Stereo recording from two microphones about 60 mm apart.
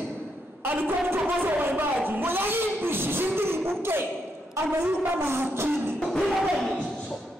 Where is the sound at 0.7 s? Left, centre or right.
Right.